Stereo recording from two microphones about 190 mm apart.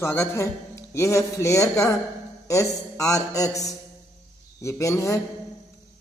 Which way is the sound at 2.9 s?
15° left (ahead or behind).